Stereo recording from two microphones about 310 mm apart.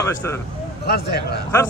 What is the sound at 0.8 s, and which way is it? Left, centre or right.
Speech, left.